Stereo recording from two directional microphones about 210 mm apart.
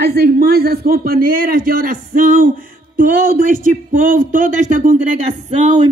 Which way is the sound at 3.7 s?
40° right (ahead or behind).